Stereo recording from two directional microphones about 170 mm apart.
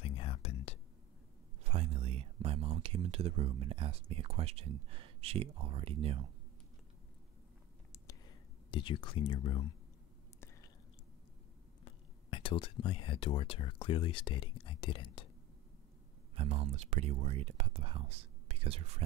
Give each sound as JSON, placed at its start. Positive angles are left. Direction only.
{"t": 0.0, "sound": "whispering", "side_deg": 35}
{"t": 1.6, "sound": "speech", "side_deg": -35}
{"t": 7.9, "sound": "a sound", "side_deg": 20}
{"t": 8.6, "sound": "speech", "side_deg": 30}
{"t": 11.8, "sound": "speech", "side_deg": 30}
{"t": 16.3, "sound": "speech", "side_deg": -35}